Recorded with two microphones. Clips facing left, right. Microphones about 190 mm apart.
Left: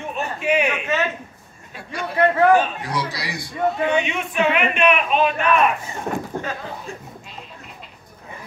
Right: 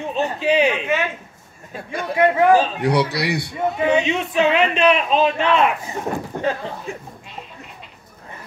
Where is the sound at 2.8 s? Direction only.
65° right (ahead or behind).